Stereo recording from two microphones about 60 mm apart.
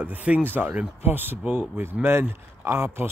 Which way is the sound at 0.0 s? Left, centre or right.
Right.